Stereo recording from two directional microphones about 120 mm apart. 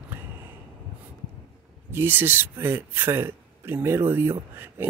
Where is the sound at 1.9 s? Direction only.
15° right (ahead or behind).